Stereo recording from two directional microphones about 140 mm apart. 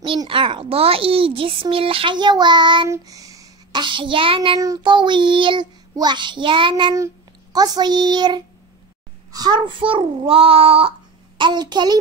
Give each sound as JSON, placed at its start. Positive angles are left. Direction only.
{"t": 0.0, "sound": "a child's voice", "side_deg": -35}
{"t": 2.9, "sound": "child singing", "side_deg": -25}
{"t": 4.6, "sound": "a child's voice", "side_deg": -30}